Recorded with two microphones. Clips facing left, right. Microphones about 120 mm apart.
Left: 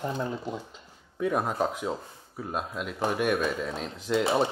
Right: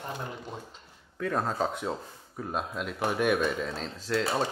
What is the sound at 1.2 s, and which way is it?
Speech, 15° left (ahead or behind).